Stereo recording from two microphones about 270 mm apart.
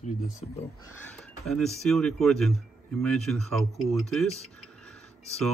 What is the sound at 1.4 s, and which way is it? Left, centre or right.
A man's voice, centre.